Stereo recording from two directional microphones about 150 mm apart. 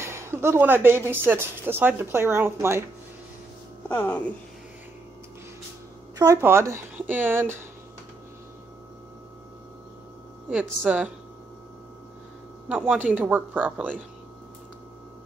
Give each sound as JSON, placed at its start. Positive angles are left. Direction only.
{"t": 0.0, "sound": "speech", "side_deg": -15}
{"t": 3.9, "sound": "speech", "side_deg": 10}
{"t": 6.1, "sound": "speech", "side_deg": -20}
{"t": 10.9, "sound": "speech", "side_deg": -5}
{"t": 12.6, "sound": "speech", "side_deg": -10}